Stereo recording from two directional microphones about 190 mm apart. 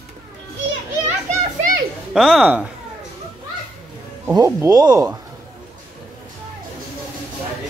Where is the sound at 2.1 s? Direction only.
Centre (ahead or behind).